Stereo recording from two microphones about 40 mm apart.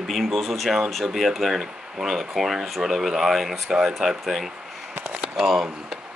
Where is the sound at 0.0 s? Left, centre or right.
Centre.